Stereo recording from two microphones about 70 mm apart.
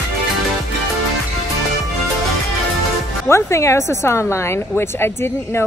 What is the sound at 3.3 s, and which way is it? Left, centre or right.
Speech, left.